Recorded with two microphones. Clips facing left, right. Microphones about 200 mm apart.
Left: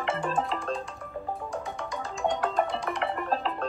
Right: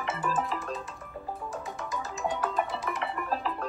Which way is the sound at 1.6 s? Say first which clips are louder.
Left 2 dB; 5° right (ahead or behind).